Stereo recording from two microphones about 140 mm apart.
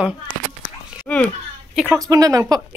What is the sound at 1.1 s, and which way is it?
Speech, 10° left (ahead or behind).